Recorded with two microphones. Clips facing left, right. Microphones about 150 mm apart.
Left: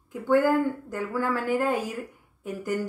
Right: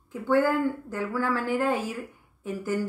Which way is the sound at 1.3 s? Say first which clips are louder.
Left 1 dB; 45° left (ahead or behind).